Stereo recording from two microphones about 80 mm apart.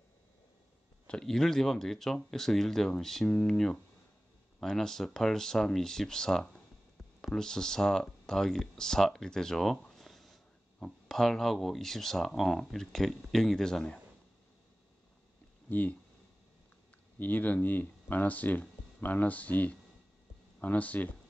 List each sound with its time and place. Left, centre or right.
1.0 s speech: centre
15.7 s speech: left
17.2 s speech: left